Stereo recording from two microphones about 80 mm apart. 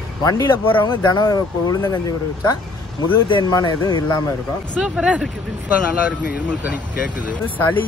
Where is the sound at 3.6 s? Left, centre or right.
Left.